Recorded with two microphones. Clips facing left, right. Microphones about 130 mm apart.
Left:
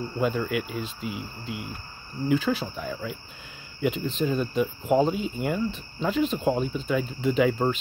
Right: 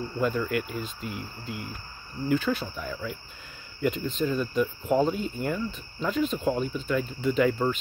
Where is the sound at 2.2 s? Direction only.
10° left (ahead or behind).